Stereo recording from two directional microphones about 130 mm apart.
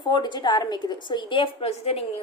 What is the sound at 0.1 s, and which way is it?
A woman's voice, 35° left (ahead or behind).